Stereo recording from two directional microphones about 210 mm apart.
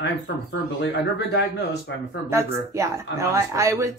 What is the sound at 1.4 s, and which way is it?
Speech, 55° left (ahead or behind).